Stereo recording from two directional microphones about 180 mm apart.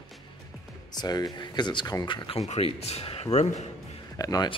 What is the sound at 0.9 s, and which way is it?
Speech, 20° left (ahead or behind).